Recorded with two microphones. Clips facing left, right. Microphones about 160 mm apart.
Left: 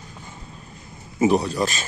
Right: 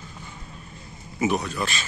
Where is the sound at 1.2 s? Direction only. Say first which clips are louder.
Left 6 dB; 35° left (ahead or behind).